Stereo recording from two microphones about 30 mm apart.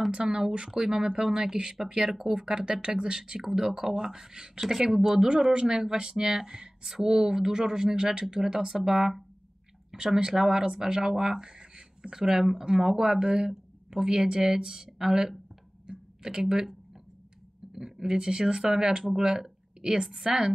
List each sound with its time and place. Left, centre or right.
0.1 s speech: right
2.4 s speech: right
3.4 s speech: centre
7.9 s speech: right
8.5 s speech: centre
17.7 s speech: centre